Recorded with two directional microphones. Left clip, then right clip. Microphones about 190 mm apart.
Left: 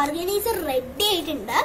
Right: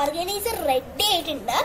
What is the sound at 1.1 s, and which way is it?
Speech, 45° right (ahead or behind).